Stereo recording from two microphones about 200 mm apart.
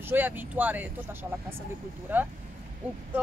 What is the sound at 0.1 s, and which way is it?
Speech, 10° right (ahead or behind).